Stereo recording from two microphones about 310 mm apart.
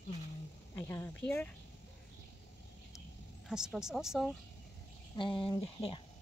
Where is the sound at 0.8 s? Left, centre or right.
Centre.